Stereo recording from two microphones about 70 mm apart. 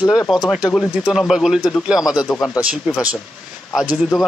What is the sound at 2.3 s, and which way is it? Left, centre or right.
Speech, centre.